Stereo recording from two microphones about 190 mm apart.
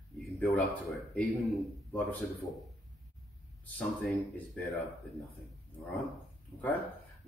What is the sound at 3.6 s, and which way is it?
A man's voice, centre (ahead or behind).